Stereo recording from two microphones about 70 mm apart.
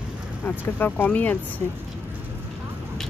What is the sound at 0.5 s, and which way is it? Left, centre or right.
Speech, left.